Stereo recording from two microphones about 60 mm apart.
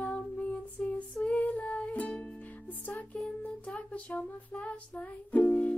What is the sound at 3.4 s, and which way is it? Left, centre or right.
Music, left.